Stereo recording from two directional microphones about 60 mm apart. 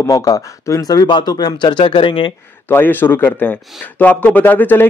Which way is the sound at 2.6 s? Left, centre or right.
Left.